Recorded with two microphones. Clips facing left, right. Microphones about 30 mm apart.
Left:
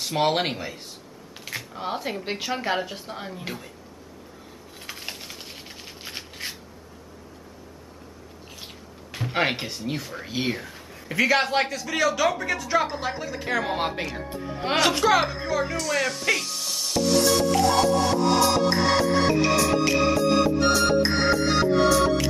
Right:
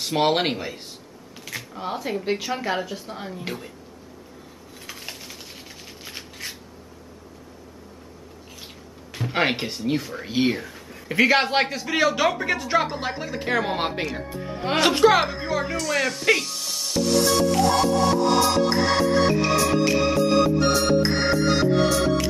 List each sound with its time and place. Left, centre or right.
0.0 s speech: centre
1.4 s speech: centre
3.4 s speech: centre
4.8 s typing: centre
6.0 s a sound: centre
9.3 s speech: centre
10.7 s a sound: centre
11.1 s a man's voice: centre
15.8 s speech: centre
16.9 s music: centre